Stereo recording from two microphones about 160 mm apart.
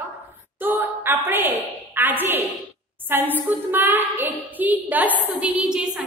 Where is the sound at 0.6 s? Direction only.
10° right (ahead or behind).